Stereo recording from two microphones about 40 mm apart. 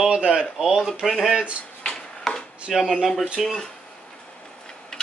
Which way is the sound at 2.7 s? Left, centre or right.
Centre.